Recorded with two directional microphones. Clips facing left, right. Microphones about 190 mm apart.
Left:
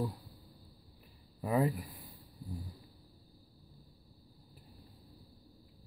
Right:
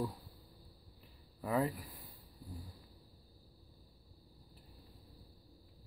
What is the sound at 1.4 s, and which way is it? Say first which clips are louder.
Speech: left 3 dB; 20° left (ahead or behind).